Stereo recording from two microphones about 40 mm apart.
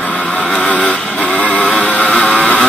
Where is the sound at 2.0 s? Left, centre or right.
Left.